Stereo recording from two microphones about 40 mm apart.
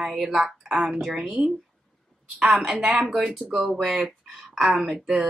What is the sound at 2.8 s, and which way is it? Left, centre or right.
Speech, centre.